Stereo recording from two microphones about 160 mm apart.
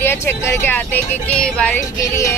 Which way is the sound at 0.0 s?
15° left (ahead or behind).